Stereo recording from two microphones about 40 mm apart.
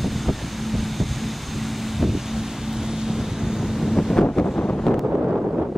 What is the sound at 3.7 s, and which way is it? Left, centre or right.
Vehicle, centre.